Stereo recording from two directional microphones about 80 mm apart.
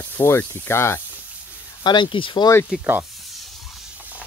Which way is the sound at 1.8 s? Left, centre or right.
Left.